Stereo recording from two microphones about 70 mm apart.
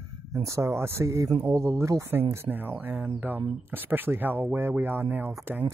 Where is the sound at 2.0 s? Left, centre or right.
Right.